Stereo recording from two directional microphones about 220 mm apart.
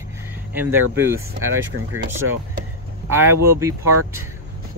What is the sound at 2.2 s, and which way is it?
Speech, 70° right (ahead or behind).